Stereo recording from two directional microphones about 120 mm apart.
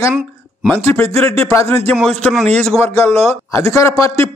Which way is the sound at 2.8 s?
25° left (ahead or behind).